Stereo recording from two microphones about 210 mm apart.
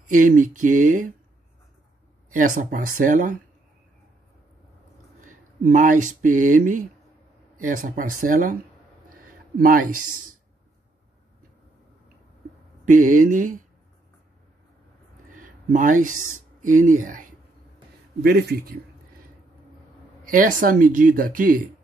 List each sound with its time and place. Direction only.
0.1 s speech: 40° right (ahead or behind)
2.3 s speech: 40° right (ahead or behind)
5.2 s speech: 40° right (ahead or behind)
9.2 s a sound: 40° right (ahead or behind)
12.8 s speech: 40° right (ahead or behind)
15.3 s a sound: 40° right (ahead or behind)
16.6 s a man's voice: 40° right (ahead or behind)
20.2 s speech: 40° right (ahead or behind)